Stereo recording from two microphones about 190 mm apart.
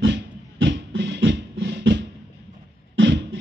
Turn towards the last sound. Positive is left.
turn(degrees=-65)  # may be behind; listen again after turning